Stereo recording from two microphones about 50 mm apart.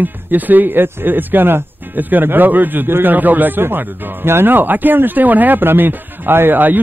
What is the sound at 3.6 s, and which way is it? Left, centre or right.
Speech, right.